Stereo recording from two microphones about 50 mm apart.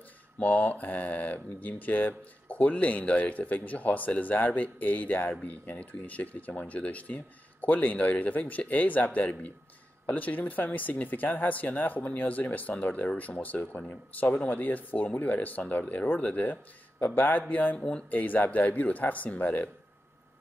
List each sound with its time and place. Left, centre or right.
0.4 s speech: left
17.7 s speech: centre
18.1 s speech: left